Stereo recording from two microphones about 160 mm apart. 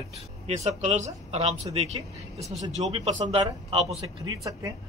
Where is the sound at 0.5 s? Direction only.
45° right (ahead or behind).